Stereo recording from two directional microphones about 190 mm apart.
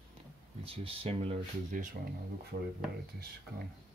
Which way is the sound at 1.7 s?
45° right (ahead or behind).